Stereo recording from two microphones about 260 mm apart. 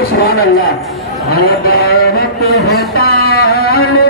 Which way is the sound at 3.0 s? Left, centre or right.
Left.